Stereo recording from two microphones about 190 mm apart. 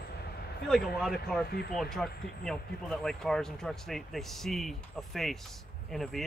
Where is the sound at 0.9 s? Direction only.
Centre (ahead or behind).